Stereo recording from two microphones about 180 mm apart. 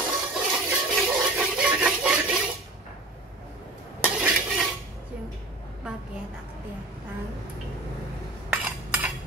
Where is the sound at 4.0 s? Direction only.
5° right (ahead or behind).